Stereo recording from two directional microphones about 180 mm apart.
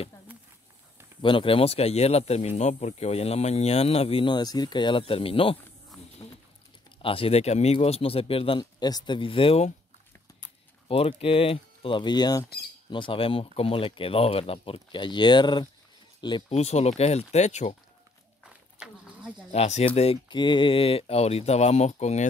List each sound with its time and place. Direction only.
1.2 s speech: 30° left (ahead or behind)
7.0 s speech: 30° left (ahead or behind)
10.9 s speech: 30° left (ahead or behind)
18.4 s a sound: 5° right (ahead or behind)
19.5 s speech: 35° left (ahead or behind)